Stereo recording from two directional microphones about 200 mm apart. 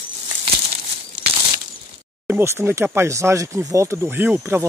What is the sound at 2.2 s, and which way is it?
Speech, 10° right (ahead or behind).